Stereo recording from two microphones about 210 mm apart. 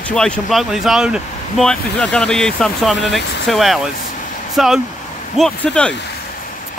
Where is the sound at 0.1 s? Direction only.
Centre (ahead or behind).